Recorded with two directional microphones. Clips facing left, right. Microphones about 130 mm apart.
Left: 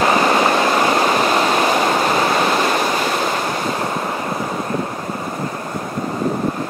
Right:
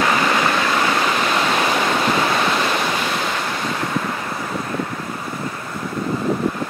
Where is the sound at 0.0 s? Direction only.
30° left (ahead or behind).